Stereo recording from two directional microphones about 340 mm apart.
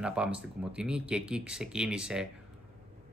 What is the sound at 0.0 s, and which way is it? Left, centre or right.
Speech, centre.